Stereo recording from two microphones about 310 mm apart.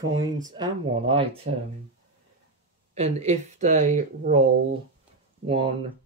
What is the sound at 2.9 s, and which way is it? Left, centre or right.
Speech, right.